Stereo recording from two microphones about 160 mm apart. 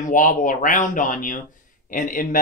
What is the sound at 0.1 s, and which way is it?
Speech, 55° left (ahead or behind).